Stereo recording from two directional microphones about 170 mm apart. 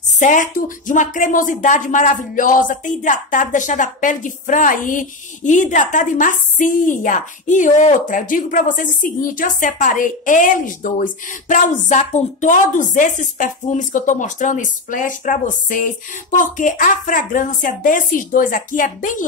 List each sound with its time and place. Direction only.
0.2 s speech: 50° left (ahead or behind)